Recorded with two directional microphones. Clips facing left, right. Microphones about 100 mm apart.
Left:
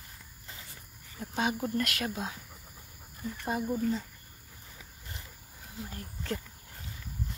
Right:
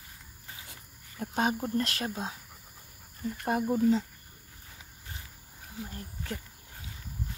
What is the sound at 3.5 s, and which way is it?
Speech, 75° right (ahead or behind).